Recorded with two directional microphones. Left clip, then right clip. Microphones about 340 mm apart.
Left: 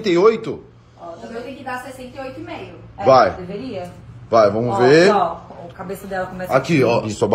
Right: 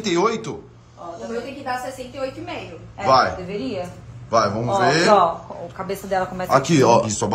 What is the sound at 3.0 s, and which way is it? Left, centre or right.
Speech, centre.